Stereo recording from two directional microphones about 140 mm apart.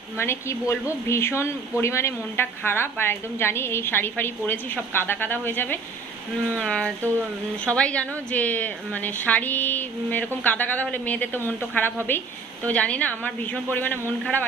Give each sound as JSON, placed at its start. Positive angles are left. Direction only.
{"t": 0.2, "sound": "speech", "side_deg": 20}